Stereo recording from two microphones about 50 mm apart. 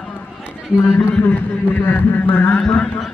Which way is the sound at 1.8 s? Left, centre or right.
Left.